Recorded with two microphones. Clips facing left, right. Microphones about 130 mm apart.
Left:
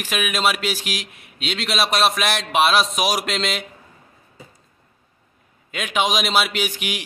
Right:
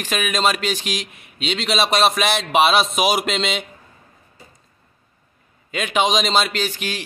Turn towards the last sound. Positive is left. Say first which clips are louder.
# right 1 dB
turn(degrees=15)  # may be behind; listen again after turning